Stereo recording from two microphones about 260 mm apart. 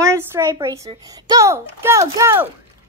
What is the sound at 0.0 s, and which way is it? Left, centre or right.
A child's voice, centre.